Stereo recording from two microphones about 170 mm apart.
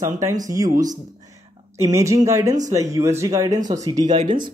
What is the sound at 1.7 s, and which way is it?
Speech, 15° right (ahead or behind).